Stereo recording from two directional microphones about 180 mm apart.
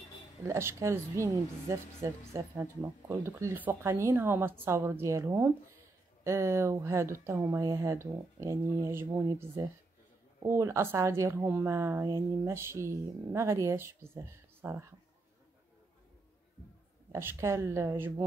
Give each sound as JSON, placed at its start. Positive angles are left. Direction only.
{"t": 0.5, "sound": "speech", "side_deg": -15}
{"t": 17.1, "sound": "speech", "side_deg": -15}